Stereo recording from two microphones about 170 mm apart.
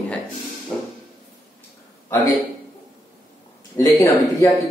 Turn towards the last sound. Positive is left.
turn(degrees=20)  # may be behind; listen again after turning